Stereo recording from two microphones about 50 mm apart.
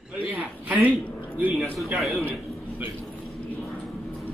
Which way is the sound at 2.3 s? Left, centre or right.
Right.